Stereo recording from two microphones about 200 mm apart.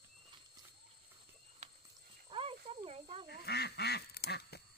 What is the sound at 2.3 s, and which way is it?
Snake, 25° right (ahead or behind).